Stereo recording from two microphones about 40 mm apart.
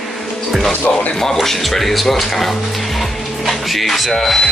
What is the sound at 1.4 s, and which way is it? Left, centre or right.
Speech, centre.